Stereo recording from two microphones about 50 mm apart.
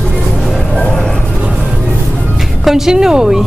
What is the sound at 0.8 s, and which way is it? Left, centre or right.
Music, centre.